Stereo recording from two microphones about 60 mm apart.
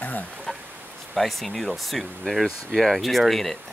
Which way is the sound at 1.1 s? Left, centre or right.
Centre.